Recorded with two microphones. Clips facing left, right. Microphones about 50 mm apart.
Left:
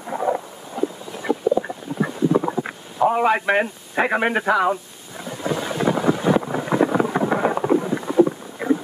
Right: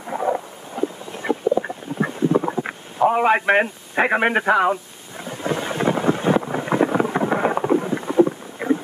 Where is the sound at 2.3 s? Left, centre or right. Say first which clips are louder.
Even; centre.